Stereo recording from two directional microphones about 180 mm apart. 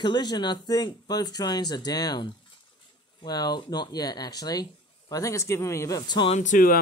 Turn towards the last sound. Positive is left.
turn(degrees=50)  # may be behind; listen again after turning